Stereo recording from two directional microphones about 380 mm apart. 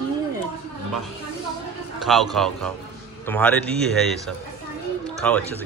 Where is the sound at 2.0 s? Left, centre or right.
Centre.